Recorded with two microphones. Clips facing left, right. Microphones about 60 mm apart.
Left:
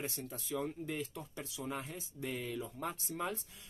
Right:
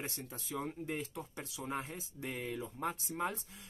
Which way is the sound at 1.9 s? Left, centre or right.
Right.